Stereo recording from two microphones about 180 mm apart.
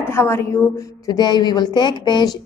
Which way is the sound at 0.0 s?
15° left (ahead or behind).